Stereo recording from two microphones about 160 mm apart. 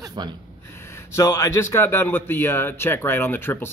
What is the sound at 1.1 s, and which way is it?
A man's voice, 20° left (ahead or behind).